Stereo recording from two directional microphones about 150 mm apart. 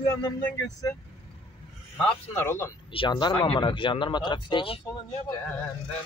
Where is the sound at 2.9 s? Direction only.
30° left (ahead or behind).